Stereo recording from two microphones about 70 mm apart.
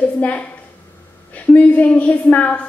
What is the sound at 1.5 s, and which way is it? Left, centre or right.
A woman's voice, left.